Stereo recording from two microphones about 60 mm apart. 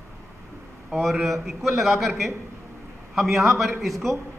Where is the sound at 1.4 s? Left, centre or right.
Centre.